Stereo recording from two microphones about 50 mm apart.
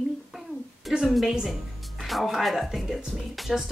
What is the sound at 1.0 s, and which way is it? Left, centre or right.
A woman's voice, centre.